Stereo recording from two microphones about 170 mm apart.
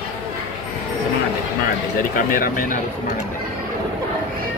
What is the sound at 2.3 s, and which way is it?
Speech, 55° left (ahead or behind).